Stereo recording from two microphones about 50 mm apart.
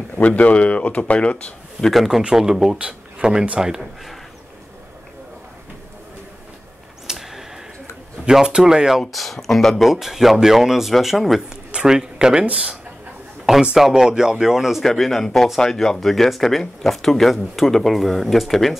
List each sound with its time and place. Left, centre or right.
0.4 s a man's voice: left
2.3 s speech: centre
7.1 s a sound: centre
8.3 s speech: centre
9.1 s speech: centre
9.8 s speech: centre
11.7 s speech: centre
13.7 s speech: centre
14.8 s speech: centre